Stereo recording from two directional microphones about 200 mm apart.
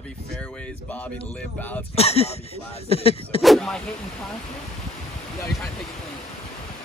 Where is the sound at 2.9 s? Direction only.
30° left (ahead or behind).